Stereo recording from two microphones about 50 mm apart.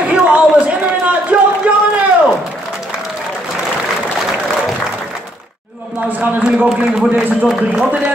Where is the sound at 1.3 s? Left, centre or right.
Right.